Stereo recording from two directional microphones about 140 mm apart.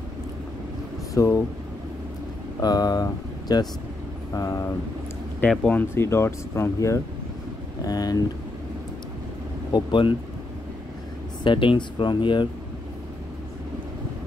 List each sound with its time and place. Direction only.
1.1 s speech: 20° left (ahead or behind)
2.6 s speech: 30° left (ahead or behind)
5.4 s speech: 10° left (ahead or behind); by 8.2 s 25° left (ahead or behind)
9.7 s speech: 30° left (ahead or behind)
11.4 s speech: 35° left (ahead or behind)